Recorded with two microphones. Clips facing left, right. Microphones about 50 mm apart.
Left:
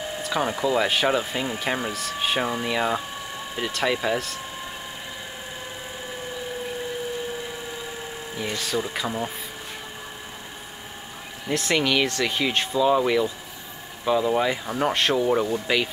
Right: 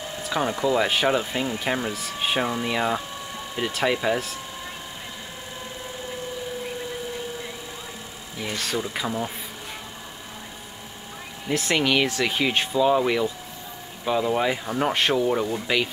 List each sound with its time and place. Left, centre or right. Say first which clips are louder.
0.2 s speech: right 1 dB; centre
8.5 s speech: right 1 dB; centre
11.4 s speech: even; centre